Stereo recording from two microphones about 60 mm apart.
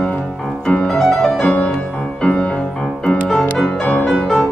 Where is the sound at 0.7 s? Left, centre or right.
Centre.